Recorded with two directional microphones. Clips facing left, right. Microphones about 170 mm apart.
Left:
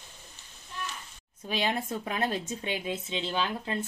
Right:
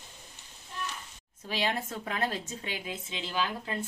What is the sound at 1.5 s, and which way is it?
Speech, 20° left (ahead or behind).